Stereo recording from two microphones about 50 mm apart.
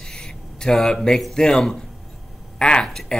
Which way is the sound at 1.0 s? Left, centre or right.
Centre.